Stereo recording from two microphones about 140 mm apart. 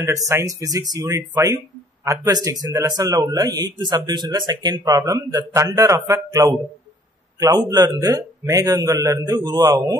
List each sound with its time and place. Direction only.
0.0 s speech: 20° right (ahead or behind)
7.5 s speech: 25° right (ahead or behind)